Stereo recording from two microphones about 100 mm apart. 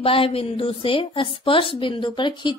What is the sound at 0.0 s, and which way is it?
A woman's voice, 70° left (ahead or behind).